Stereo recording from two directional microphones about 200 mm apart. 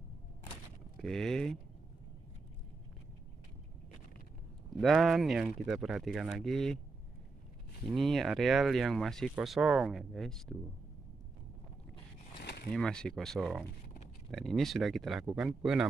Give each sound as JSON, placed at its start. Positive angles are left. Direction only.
{"t": 1.0, "sound": "speech", "side_deg": 5}
{"t": 4.7, "sound": "speech", "side_deg": 0}
{"t": 7.9, "sound": "speech", "side_deg": 0}
{"t": 12.4, "sound": "a sound", "side_deg": 55}
{"t": 12.7, "sound": "speech", "side_deg": 5}